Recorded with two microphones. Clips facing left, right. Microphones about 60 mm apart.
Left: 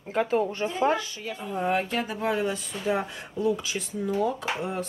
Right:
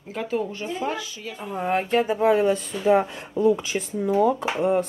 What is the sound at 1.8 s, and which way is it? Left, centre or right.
Speech, right.